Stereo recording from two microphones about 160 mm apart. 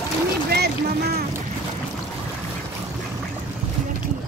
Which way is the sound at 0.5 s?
90° right.